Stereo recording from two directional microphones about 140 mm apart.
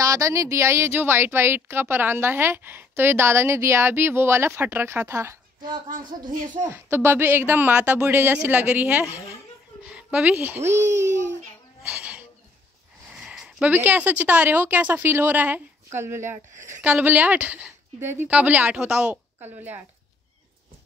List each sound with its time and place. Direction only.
0.0 s speech: 25° right (ahead or behind)
5.9 s speech: 75° right (ahead or behind)
6.7 s speech: 15° right (ahead or behind)
10.8 s a child's voice: 55° right (ahead or behind)
11.8 s a sound: 10° right (ahead or behind)
13.1 s speech: 5° right (ahead or behind)
16.5 s a woman's voice: 60° right (ahead or behind)
16.8 s speech: 10° right (ahead or behind)